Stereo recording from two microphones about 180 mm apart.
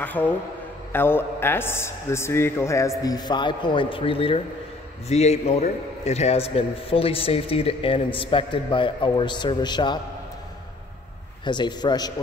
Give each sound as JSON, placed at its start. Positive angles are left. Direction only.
{"t": 0.0, "sound": "a man's voice", "side_deg": 10}
{"t": 11.4, "sound": "speech", "side_deg": 25}